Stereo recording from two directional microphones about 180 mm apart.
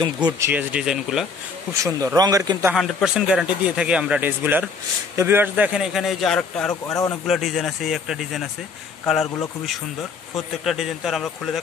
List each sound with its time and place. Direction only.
0.0 s a man's voice: 25° right (ahead or behind)
0.5 s speech: 10° right (ahead or behind)
1.7 s a man's voice: 20° right (ahead or behind)
2.7 s speech: centre (ahead or behind)
6.7 s a man's voice: 20° left (ahead or behind)
7.2 s speech: centre (ahead or behind)
10.3 s speech: centre (ahead or behind)